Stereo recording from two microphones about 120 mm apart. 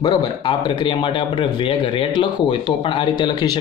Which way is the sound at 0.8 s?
45° left (ahead or behind).